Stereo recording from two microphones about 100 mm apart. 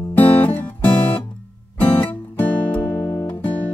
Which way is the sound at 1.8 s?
15° left (ahead or behind).